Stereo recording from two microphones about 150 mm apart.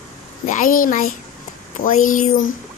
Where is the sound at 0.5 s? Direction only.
65° left (ahead or behind).